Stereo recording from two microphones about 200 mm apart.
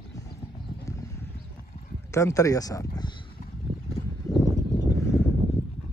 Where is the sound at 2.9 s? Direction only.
20° left (ahead or behind).